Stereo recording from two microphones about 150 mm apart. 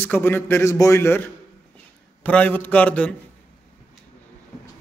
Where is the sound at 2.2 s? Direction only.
10° left (ahead or behind).